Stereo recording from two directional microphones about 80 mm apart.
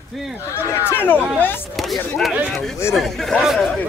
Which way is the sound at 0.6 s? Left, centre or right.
Left.